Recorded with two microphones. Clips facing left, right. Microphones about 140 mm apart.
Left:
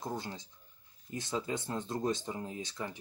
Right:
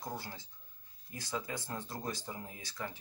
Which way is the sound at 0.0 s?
20° left (ahead or behind).